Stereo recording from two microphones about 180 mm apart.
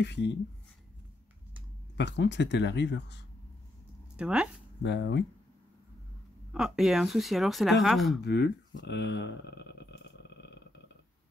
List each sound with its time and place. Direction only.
0.0 s speech: 75° left (ahead or behind)
2.0 s speech: 75° left (ahead or behind)
4.2 s speech: 5° right (ahead or behind)
4.8 s speech: 75° left (ahead or behind)
6.5 s speech: 5° right (ahead or behind)
8.2 s a sound: 70° left (ahead or behind)